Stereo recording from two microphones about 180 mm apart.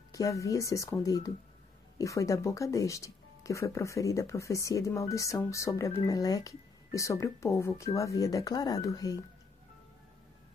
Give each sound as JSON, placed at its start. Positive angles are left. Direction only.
{"t": 0.1, "sound": "speech", "side_deg": 20}